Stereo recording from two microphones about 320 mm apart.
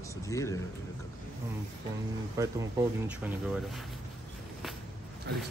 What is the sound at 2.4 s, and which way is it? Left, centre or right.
Speech, centre.